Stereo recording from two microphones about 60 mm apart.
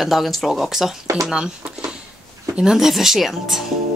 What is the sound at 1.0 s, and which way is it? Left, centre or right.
Speech, right.